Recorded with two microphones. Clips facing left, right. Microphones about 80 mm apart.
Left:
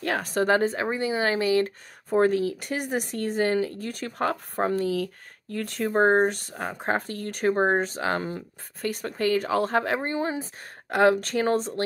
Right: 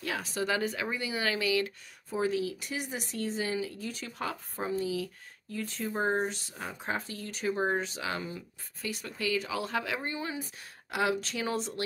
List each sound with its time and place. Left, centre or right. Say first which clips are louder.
0.0 s speech: left 8 dB; left
0.6 s speech: left 8 dB; left
2.1 s speech: left 9 dB; left
10.9 s speech: left 10 dB; left